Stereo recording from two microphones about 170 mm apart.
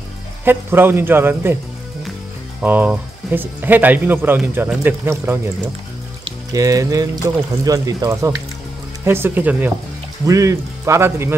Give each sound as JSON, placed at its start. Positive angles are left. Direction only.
{"t": 0.5, "sound": "speech", "side_deg": -15}
{"t": 2.6, "sound": "speech", "side_deg": -10}
{"t": 6.5, "sound": "speech", "side_deg": -20}